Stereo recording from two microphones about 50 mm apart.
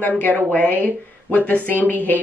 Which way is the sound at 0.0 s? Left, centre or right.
Left.